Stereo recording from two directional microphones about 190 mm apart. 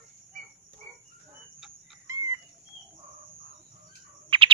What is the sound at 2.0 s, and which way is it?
Chicken, 15° right (ahead or behind).